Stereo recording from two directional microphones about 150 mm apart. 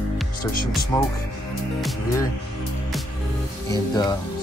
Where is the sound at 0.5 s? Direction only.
70° left (ahead or behind).